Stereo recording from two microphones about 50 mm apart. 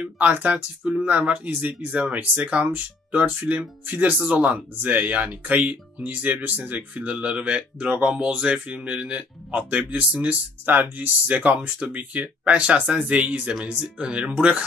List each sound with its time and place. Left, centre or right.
0.0 s speech: right
4.0 s speech: right